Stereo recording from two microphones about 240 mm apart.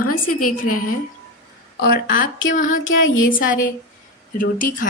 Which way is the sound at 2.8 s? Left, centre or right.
Left.